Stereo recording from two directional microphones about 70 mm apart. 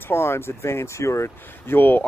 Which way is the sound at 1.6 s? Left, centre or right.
Left.